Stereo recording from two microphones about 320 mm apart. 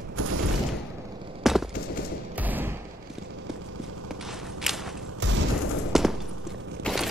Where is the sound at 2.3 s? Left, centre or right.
Centre.